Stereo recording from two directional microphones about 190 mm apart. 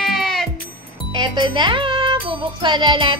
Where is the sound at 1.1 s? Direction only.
25° right (ahead or behind).